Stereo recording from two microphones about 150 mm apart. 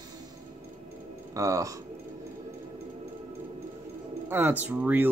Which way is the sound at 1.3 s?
20° right (ahead or behind).